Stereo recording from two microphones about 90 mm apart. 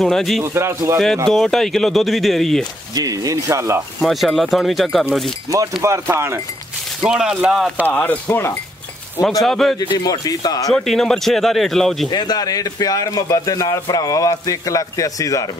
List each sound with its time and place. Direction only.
0.0 s speech: 5° left (ahead or behind)
0.4 s speech: 30° right (ahead or behind)
1.3 s speech: 5° left (ahead or behind)
2.9 s speech: 45° right (ahead or behind)
4.0 s speech: centre (ahead or behind)
5.5 s speech: 35° right (ahead or behind)
7.0 s speech: 5° right (ahead or behind)
7.8 s speech: 15° left (ahead or behind)
9.2 s speech: 5° left (ahead or behind)
9.8 s speech: 45° left (ahead or behind)
10.7 s speech: 5° left (ahead or behind)
12.1 s a man's voice: 50° left (ahead or behind)